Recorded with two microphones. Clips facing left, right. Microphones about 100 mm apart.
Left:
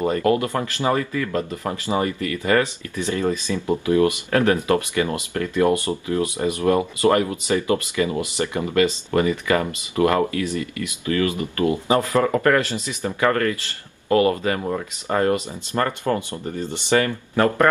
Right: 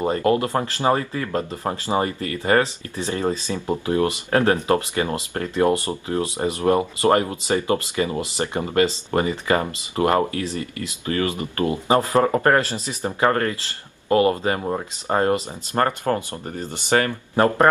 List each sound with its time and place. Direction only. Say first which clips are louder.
0.0 s speech: even; 30° right (ahead or behind)
3.5 s speech: left 2 dB; 15° right (ahead or behind)
3.8 s speech: left 4 dB; 30° right (ahead or behind)
15.7 s speech: right 1 dB; 45° right (ahead or behind)